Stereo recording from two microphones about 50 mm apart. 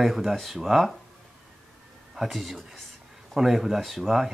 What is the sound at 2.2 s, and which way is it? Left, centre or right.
Speech, centre.